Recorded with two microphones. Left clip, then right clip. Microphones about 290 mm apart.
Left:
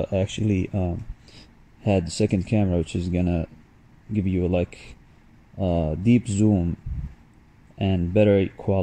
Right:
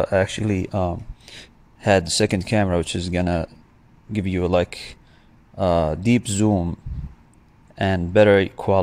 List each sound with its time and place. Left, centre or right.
0.0 s speech: right
2.8 s speech: right
3.1 s speech: right
4.6 s speech: right
5.6 s speech: right
7.7 s speech: right